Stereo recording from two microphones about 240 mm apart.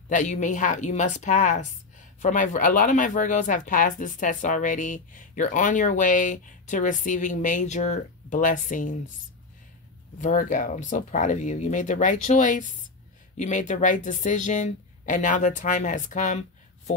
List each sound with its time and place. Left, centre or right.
0.1 s speech: left
10.2 s speech: left